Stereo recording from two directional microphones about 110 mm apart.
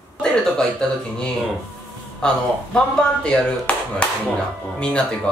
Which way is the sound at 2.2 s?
5° left (ahead or behind).